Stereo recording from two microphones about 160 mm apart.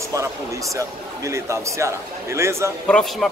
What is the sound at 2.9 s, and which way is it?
Speech, centre (ahead or behind).